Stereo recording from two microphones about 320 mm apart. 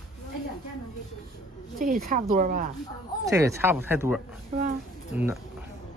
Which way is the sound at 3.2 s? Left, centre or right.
Centre.